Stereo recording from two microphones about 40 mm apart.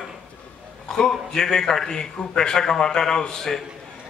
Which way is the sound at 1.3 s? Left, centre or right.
Centre.